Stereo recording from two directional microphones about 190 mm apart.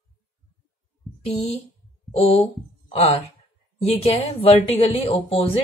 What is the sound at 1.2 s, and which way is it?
A woman's voice, 30° left (ahead or behind).